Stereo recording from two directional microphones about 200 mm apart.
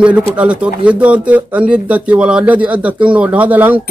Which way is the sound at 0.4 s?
5° right (ahead or behind).